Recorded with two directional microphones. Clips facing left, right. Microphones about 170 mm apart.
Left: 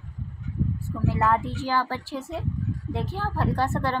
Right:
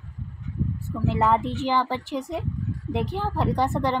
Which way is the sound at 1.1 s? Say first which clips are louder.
Right 2 dB; 20° right (ahead or behind).